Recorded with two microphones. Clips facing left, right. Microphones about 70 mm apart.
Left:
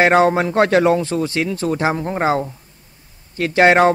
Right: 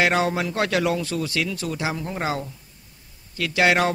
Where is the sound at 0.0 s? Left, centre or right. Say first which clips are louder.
Left 8 dB; left.